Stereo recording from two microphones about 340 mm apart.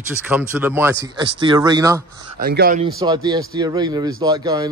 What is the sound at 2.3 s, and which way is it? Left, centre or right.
Speech, right.